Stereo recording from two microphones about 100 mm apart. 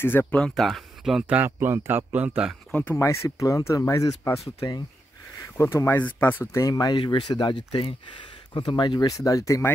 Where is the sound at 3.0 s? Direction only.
30° left (ahead or behind).